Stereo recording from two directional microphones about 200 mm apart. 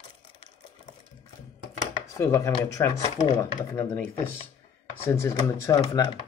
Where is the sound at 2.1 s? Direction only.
15° left (ahead or behind); by 4.5 s 30° left (ahead or behind).